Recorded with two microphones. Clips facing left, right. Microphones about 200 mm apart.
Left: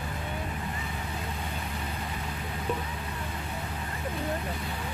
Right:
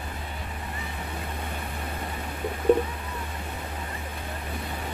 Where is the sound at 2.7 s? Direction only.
55° right (ahead or behind).